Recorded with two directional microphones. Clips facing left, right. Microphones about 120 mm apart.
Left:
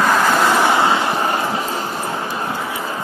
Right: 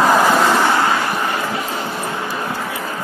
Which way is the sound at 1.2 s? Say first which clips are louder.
Left 2 dB; 35° left (ahead or behind).